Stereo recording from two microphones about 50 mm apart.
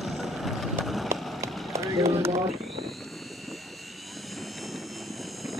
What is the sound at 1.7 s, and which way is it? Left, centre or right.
Run, right.